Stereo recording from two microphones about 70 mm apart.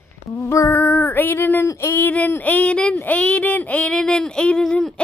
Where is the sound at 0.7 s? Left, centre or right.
Left.